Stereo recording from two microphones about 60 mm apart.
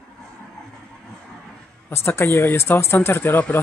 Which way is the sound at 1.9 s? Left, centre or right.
Left.